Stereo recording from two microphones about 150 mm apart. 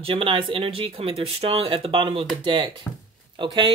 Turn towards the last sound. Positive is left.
turn(degrees=-30)  # may be behind; listen again after turning